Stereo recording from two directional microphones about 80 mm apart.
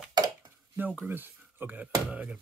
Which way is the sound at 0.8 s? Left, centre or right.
Right.